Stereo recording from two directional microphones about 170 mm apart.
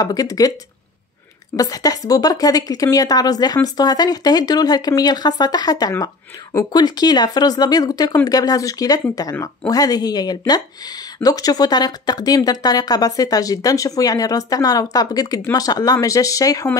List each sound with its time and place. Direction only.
0.0 s speech: 20° left (ahead or behind)
1.6 s speech: 20° left (ahead or behind)